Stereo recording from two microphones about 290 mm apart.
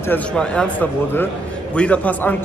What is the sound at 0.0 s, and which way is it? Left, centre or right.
A man's voice, centre.